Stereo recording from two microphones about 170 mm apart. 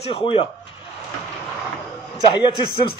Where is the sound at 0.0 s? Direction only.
35° left (ahead or behind).